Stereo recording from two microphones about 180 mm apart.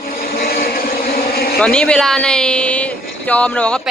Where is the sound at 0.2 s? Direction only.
55° left (ahead or behind).